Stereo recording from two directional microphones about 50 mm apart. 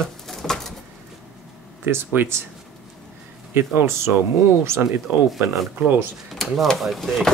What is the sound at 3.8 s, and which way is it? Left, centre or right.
Speech, right.